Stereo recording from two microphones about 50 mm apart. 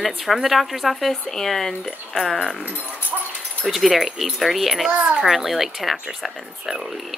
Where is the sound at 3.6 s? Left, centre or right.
Centre.